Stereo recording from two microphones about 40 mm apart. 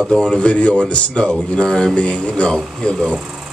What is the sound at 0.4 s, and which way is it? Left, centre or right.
Male singing, left.